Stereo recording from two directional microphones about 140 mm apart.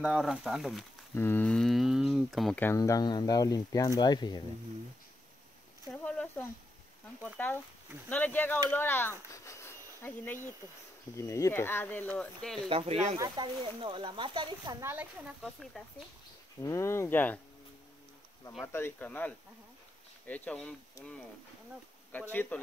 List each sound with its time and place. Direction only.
0.0 s speech: 5° right (ahead or behind)
1.1 s a sound: 15° left (ahead or behind)
2.6 s speech: 20° left (ahead or behind)
6.0 s speech: 10° left (ahead or behind)
12.6 s speech: 45° right (ahead or behind)
13.2 s speech: 35° right (ahead or behind)
14.8 s speech: 15° right (ahead or behind)
15.2 s speech: centre (ahead or behind)
16.6 s speech: 20° left (ahead or behind)
18.6 s speech: 15° left (ahead or behind)
22.1 s speech: 15° left (ahead or behind)